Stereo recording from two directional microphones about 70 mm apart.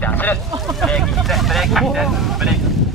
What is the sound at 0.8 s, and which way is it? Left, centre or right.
Speech, centre.